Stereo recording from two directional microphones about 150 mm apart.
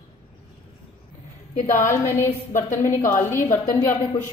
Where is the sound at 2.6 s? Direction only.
60° left (ahead or behind).